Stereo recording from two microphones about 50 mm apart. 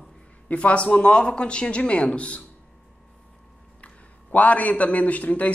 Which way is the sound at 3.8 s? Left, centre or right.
Left.